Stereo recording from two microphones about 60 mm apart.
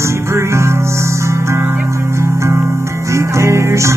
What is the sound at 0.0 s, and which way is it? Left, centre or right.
Music, right.